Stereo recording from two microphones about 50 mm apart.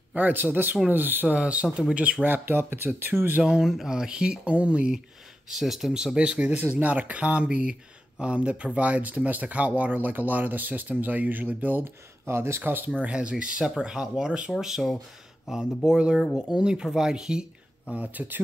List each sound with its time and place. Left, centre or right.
0.1 s speech: right
1.3 s speech: right
2.2 s speech: right
3.1 s speech: centre
3.6 s speech: centre
3.9 s speech: centre
5.5 s speech: centre; by 6.5 s right
6.5 s speech: right
11.8 s speech: right
13.0 s speech: right
17.9 s speech: right